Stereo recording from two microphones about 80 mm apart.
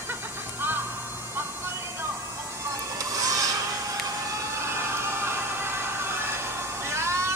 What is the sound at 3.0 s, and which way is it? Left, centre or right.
Filing, right.